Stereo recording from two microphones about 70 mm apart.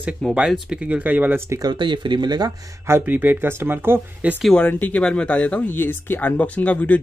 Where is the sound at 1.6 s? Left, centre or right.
Right.